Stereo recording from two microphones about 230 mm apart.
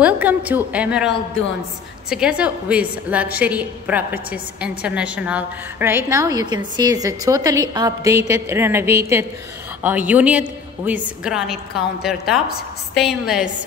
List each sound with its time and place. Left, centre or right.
0.0 s a woman's voice: centre